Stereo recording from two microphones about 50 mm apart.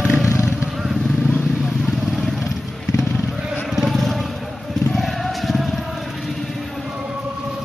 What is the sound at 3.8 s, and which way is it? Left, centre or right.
Vehicle, centre.